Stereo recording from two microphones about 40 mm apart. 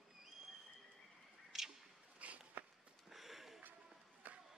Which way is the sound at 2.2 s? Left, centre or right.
Right.